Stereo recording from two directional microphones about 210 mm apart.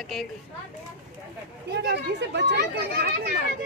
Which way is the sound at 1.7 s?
55° right (ahead or behind).